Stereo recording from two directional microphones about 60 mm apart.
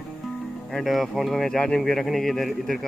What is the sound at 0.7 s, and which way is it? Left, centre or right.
Speech, centre.